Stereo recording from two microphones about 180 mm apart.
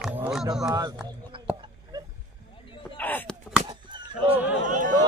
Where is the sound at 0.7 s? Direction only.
20° right (ahead or behind).